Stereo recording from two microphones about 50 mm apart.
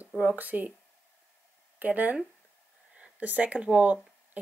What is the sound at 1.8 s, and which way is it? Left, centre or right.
Speech, right.